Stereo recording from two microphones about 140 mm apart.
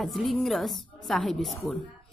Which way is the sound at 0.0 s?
Centre (ahead or behind).